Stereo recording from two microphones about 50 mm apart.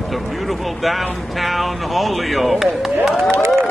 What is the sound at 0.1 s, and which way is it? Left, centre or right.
Speech, centre.